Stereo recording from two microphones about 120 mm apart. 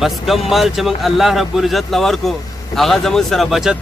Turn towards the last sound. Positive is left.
turn(degrees=-5)  # may be behind; listen again after turning